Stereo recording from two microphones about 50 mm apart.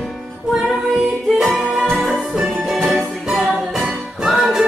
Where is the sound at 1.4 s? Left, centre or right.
Centre.